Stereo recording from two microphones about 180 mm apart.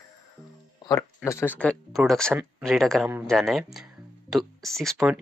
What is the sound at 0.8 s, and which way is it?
Speech, 20° left (ahead or behind).